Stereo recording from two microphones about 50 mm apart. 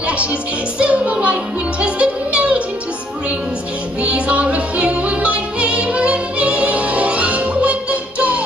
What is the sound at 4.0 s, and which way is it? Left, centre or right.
Music, right.